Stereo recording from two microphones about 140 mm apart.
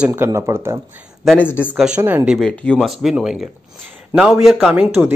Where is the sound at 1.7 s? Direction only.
5° right (ahead or behind).